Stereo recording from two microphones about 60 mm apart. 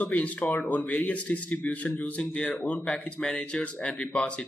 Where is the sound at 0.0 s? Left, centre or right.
Left.